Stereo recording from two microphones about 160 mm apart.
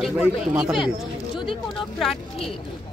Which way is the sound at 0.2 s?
5° right (ahead or behind).